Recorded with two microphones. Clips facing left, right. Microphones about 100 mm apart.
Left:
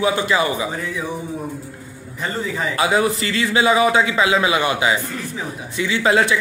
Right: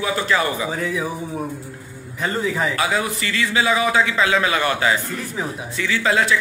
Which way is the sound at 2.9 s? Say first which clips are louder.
Left 4 dB; 30° left (ahead or behind).